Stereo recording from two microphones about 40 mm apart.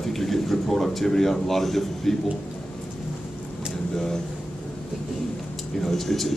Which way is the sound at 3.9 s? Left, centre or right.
Centre.